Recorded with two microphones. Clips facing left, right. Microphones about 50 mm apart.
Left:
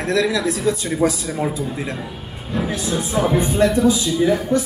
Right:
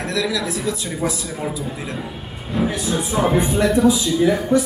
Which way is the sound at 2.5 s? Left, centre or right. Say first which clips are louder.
Right 1 dB; centre.